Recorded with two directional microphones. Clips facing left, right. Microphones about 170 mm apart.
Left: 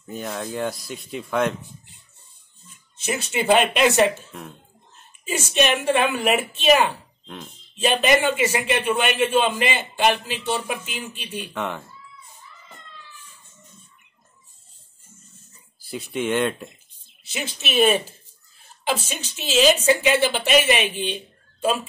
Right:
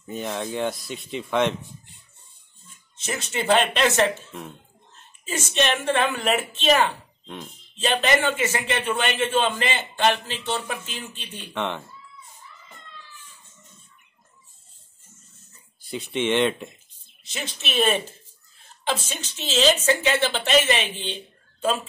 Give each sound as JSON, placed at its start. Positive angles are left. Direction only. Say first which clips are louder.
{"t": 0.1, "sound": "speech", "louder": "right 1 dB", "side_deg": 0}
{"t": 3.0, "sound": "a man's voice", "louder": "left 3 dB", "side_deg": 10}
{"t": 5.2, "sound": "a man's voice", "louder": "left 3 dB", "side_deg": 10}
{"t": 7.2, "sound": "speech", "louder": "right 1 dB", "side_deg": 0}
{"t": 7.7, "sound": "a man's voice", "louder": "left 3 dB", "side_deg": 15}
{"t": 15.9, "sound": "a man's voice", "louder": "even", "side_deg": 0}
{"t": 21.1, "sound": "a sound", "louder": "left 3 dB", "side_deg": 10}